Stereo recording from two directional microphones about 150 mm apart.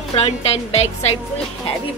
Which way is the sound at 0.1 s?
40° left (ahead or behind).